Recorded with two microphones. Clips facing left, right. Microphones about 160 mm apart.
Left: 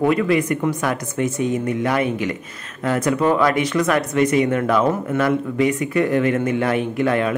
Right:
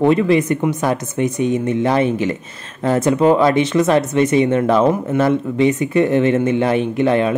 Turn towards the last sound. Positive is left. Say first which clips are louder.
# right 4 dB
turn(degrees=-25)  # may be behind; listen again after turning